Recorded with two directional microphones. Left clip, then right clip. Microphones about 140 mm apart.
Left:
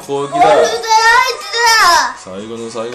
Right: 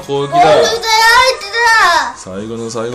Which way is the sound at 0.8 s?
40° right (ahead or behind).